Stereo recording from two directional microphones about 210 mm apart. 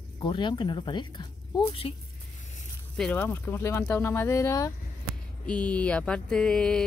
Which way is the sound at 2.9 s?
5° left (ahead or behind).